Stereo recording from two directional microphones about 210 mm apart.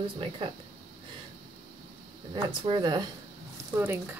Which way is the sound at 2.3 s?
20° right (ahead or behind).